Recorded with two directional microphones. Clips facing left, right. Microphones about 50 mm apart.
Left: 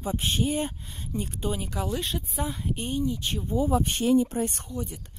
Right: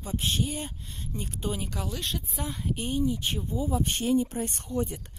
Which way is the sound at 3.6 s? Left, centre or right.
Left.